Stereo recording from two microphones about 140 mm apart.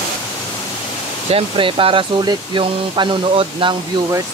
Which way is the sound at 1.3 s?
40° right (ahead or behind).